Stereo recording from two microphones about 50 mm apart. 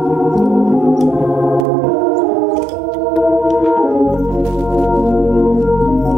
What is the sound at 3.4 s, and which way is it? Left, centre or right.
Organ, centre.